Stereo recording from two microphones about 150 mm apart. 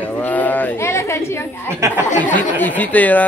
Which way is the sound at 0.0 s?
10° left (ahead or behind).